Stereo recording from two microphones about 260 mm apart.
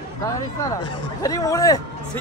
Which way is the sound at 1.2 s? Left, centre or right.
Centre.